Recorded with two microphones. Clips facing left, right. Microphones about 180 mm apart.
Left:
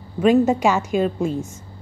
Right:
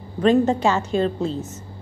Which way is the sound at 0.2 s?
10° left (ahead or behind).